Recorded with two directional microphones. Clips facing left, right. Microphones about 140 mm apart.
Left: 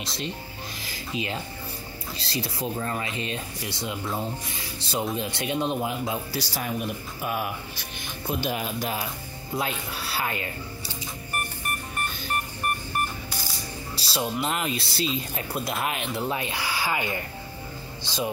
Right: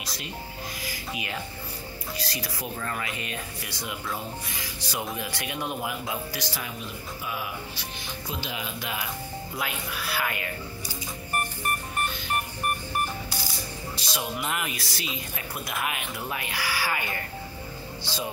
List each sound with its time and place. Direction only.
0.0 s speech: 25° left (ahead or behind)
6.8 s a man's voice: 50° left (ahead or behind); by 10.5 s 30° left (ahead or behind)
13.9 s speech: 30° left (ahead or behind)